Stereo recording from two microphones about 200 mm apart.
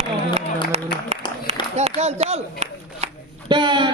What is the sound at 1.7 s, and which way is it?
A man's voice, 35° right (ahead or behind).